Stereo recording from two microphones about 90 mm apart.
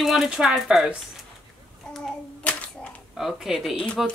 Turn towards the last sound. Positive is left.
turn(degrees=-5)  # may be behind; listen again after turning